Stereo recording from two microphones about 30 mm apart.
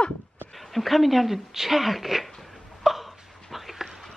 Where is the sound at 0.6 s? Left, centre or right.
Centre.